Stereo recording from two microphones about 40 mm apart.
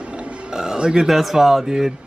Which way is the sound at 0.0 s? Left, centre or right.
Right.